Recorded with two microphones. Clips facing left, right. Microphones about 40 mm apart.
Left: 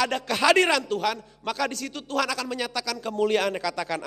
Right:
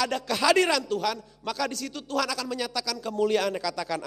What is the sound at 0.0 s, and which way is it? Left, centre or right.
A man's voice, left.